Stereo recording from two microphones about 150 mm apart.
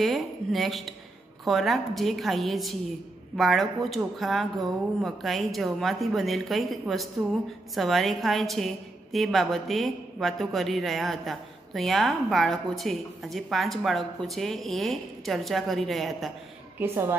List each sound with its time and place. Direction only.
0.0 s a woman's voice: centre (ahead or behind)